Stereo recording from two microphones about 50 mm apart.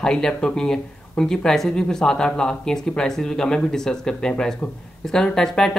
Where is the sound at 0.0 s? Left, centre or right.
Centre.